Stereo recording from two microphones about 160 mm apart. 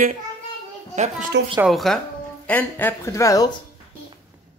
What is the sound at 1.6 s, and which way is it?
Speech, centre (ahead or behind).